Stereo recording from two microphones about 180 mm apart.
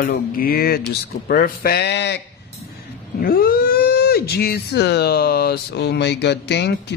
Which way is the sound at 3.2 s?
55° left (ahead or behind).